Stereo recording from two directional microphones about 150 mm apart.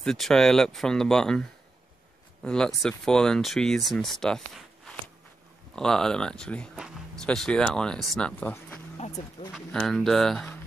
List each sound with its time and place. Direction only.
0.0 s speech: 5° left (ahead or behind)
2.4 s speech: 5° left (ahead or behind)
8.9 s vehicle: 45° left (ahead or behind)
9.5 s speech: 5° left (ahead or behind)